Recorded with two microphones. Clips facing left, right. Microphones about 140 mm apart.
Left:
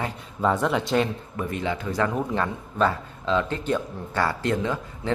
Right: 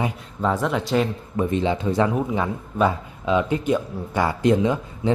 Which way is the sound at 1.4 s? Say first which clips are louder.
Right 7 dB; 25° right (ahead or behind).